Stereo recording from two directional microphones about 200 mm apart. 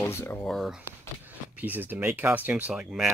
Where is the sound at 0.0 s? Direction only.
10° left (ahead or behind).